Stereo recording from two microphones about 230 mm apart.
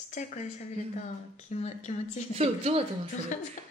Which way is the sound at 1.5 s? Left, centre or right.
Left.